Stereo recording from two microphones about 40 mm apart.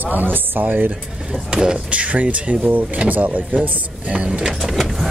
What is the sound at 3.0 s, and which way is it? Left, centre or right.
Speech, right.